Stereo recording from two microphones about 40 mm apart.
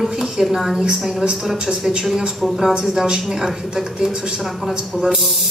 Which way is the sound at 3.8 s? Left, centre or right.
Centre.